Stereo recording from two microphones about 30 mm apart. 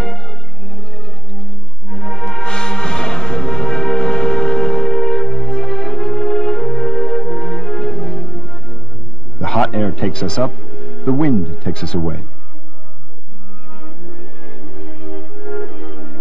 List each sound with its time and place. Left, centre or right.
0.0 s music: left
9.4 s speech: left
14.6 s music: left